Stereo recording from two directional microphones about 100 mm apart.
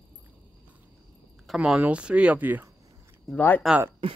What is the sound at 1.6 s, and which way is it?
Speech, 10° right (ahead or behind).